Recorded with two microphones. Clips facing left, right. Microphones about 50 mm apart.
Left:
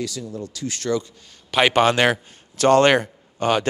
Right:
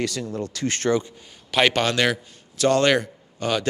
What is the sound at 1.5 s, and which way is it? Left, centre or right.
A man's voice, centre.